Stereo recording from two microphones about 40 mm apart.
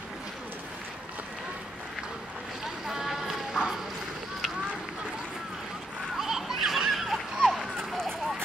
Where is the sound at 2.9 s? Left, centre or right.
Centre.